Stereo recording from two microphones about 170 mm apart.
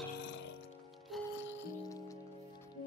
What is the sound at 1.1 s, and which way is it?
Music, centre (ahead or behind).